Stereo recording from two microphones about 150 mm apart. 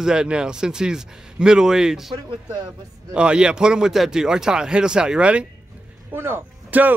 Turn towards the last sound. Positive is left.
turn(degrees=-10)  # may be behind; listen again after turning